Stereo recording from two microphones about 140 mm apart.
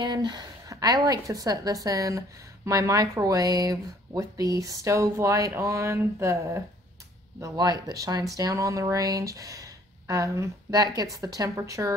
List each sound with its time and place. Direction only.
0.0 s speech: 30° right (ahead or behind)